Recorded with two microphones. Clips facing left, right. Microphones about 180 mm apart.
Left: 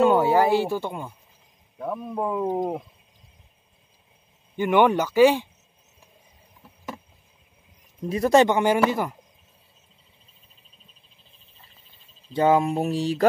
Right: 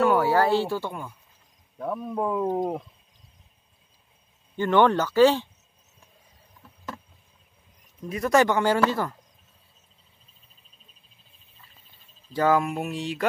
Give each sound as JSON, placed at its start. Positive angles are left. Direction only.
{"t": 0.0, "sound": "speech", "side_deg": 20}
{"t": 1.8, "sound": "speech", "side_deg": 5}
{"t": 4.6, "sound": "speech", "side_deg": 15}
{"t": 8.0, "sound": "speech", "side_deg": 30}
{"t": 12.3, "sound": "speech", "side_deg": 25}